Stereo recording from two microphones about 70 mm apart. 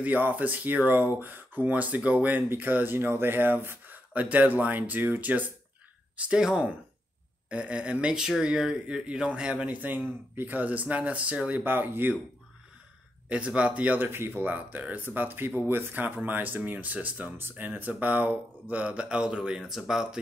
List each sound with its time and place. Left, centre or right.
0.0 s speech: right
11.6 s speech: right
13.3 s speech: centre